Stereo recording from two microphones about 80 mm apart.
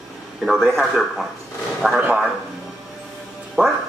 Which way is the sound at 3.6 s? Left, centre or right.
Right.